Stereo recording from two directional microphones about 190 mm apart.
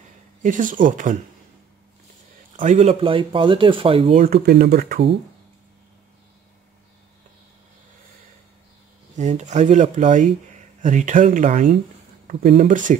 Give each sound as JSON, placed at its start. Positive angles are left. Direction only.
{"t": 0.4, "sound": "speech", "side_deg": -45}
{"t": 2.5, "sound": "speech", "side_deg": -40}
{"t": 4.3, "sound": "speech", "side_deg": -55}
{"t": 9.1, "sound": "speech", "side_deg": -35}